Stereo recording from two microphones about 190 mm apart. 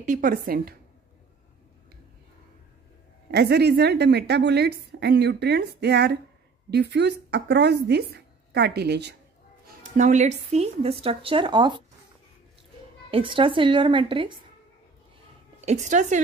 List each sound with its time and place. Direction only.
0.0 s a woman's voice: 45° right (ahead or behind)
3.3 s a woman's voice: 60° right (ahead or behind)
9.9 s speech: 40° right (ahead or behind); by 11.8 s 25° right (ahead or behind)
13.1 s a woman's voice: 25° right (ahead or behind)
15.6 s speech: 40° right (ahead or behind)